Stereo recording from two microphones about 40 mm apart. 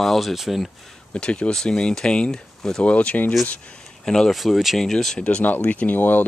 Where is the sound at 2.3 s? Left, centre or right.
Centre.